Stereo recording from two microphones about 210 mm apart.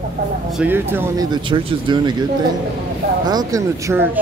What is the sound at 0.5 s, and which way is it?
Speech, 10° right (ahead or behind).